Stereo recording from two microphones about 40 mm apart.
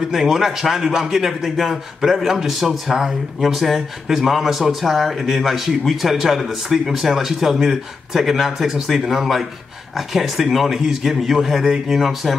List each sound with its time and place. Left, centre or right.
0.1 s speech: centre
2.9 s speech: centre
3.3 s speech: centre